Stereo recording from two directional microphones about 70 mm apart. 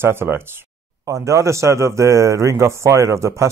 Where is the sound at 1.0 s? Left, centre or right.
Right.